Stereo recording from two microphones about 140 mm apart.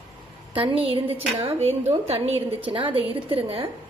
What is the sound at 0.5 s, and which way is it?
Speech, 40° right (ahead or behind).